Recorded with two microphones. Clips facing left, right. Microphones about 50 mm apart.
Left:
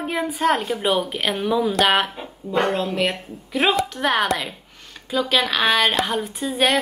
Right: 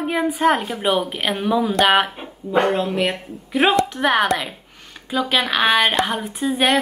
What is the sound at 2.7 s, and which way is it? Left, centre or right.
A woman's voice, centre.